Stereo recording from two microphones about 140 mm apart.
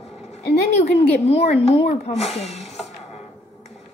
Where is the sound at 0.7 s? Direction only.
50° left (ahead or behind).